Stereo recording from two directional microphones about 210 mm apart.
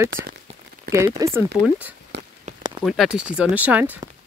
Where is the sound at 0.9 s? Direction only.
45° right (ahead or behind).